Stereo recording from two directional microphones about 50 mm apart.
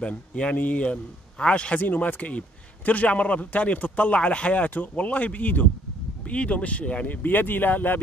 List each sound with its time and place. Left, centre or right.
0.0 s a man's voice: left
6.2 s a man's voice: left
7.2 s speech: left